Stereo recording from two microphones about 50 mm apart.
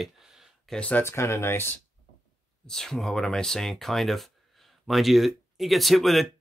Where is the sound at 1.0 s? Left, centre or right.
Left.